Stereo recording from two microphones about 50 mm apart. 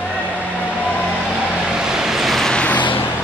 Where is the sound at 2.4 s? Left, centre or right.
Centre.